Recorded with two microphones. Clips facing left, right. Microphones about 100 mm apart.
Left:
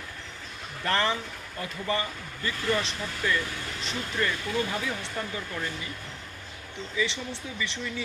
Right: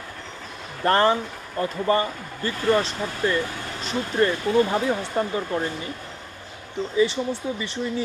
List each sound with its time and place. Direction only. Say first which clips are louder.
0.8 s speech: right 8 dB; 40° right (ahead or behind)
7.0 s speech: right 9 dB; 35° right (ahead or behind)